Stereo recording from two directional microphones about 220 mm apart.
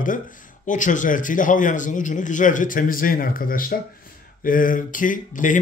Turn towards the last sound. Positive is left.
turn(degrees=35)  # may be behind; listen again after turning